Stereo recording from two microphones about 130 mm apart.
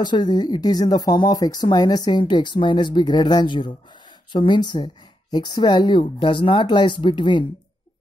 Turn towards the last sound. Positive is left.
turn(degrees=40)  # may be behind; listen again after turning